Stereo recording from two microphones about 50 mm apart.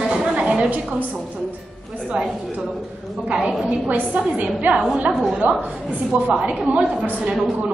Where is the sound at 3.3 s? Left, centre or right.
Centre.